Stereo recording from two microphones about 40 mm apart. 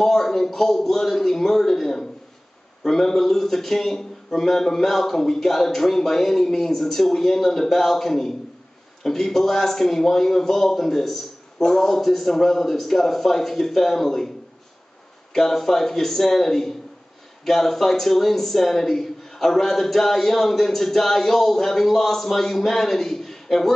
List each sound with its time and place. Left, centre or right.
0.0 s speech: centre
15.3 s speech: centre